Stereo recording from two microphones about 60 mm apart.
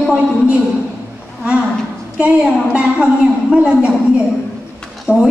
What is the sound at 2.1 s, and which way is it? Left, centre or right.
A woman's voice, centre.